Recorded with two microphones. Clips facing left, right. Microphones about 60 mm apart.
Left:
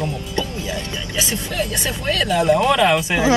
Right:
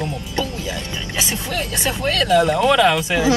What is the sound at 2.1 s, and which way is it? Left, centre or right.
Speech, centre.